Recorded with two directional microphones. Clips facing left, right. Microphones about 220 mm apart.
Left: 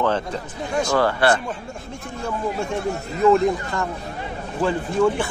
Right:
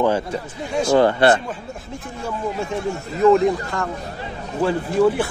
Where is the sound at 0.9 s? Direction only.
20° right (ahead or behind).